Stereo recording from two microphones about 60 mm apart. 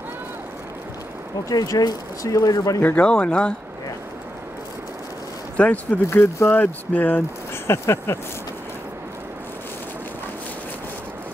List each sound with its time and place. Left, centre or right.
1.5 s speech: left
2.8 s speech: left
3.1 s speech: centre
5.6 s speech: left
6.0 s speech: left
6.5 s speech: left
7.6 s speech: left